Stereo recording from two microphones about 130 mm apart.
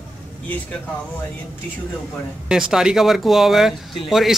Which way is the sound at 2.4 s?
5° right (ahead or behind).